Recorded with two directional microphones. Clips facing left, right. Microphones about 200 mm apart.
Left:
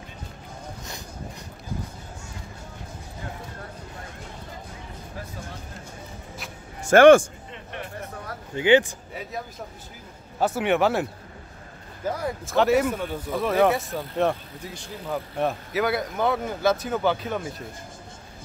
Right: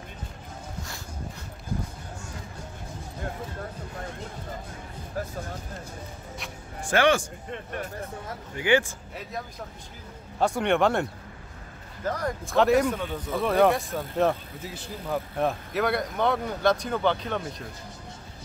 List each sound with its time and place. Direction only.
6.9 s speech: 50° left (ahead or behind)
7.5 s a sound: 45° right (ahead or behind)
8.5 s speech: 20° left (ahead or behind)
10.4 s speech: 5° left (ahead or behind)